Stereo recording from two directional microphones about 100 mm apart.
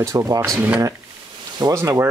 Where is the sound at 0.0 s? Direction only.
35° right (ahead or behind).